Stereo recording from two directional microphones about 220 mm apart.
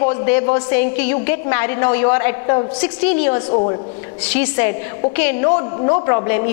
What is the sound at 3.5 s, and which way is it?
Speech, 30° left (ahead or behind).